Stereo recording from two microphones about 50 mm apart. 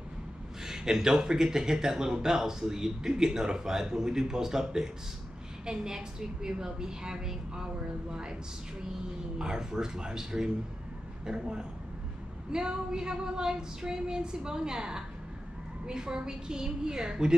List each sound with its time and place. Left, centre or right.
0.7 s speech: centre
9.4 s speech: centre